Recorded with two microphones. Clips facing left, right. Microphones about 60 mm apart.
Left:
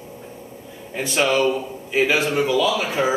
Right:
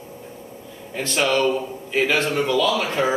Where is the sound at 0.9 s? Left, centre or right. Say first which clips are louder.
Left 1 dB; centre.